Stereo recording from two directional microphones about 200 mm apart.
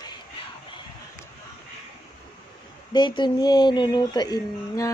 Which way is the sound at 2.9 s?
20° left (ahead or behind).